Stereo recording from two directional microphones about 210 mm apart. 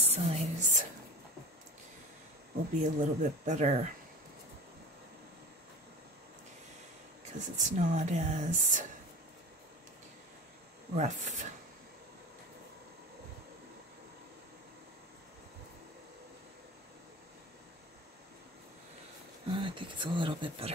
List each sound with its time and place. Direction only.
0.0 s a sound: 30° right (ahead or behind)
2.8 s speech: 35° right (ahead or behind)
7.3 s speech: 35° right (ahead or behind)
11.0 s speech: 35° right (ahead or behind)
19.4 s speech: 25° right (ahead or behind)